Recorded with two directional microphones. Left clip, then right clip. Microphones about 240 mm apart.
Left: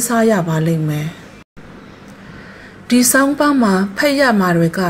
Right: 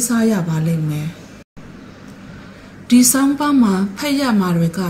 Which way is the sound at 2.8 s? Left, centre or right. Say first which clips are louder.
Left 1 dB; left.